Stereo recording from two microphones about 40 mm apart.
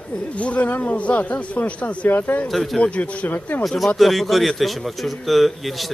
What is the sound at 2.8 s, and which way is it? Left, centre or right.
Speech, left.